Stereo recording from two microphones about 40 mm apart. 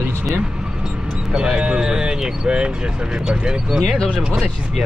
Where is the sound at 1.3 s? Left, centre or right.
Right.